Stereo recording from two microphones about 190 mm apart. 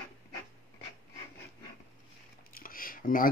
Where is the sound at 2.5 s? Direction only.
50° left (ahead or behind).